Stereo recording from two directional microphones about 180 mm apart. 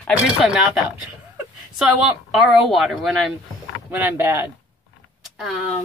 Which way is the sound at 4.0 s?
10° right (ahead or behind).